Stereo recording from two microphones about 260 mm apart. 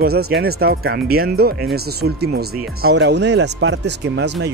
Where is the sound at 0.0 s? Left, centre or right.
Right.